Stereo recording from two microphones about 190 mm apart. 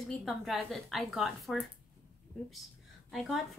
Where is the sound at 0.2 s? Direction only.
Centre (ahead or behind).